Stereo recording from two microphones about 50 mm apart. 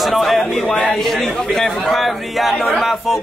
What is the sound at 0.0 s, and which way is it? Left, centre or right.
Chatter, centre.